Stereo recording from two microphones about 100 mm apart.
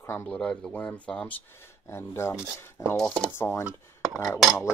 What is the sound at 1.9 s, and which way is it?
Speech, 25° left (ahead or behind).